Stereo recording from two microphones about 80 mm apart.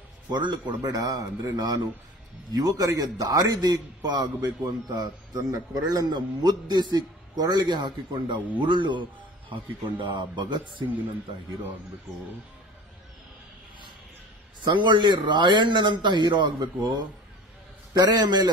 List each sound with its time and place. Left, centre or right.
0.3 s a man's voice: right
4.6 s a man's voice: right
14.6 s a man's voice: right